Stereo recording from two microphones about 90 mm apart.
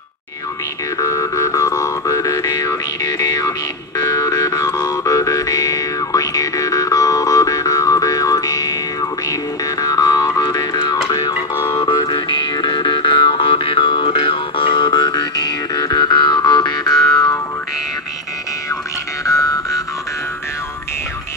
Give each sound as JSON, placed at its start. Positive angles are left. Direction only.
{"t": 0.9, "sound": "music", "side_deg": 35}
{"t": 9.8, "sound": "music", "side_deg": 45}
{"t": 11.5, "sound": "music", "side_deg": 30}
{"t": 11.8, "sound": "music", "side_deg": 55}
{"t": 19.2, "sound": "music", "side_deg": 35}